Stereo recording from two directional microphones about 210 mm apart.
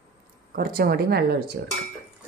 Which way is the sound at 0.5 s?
45° right (ahead or behind).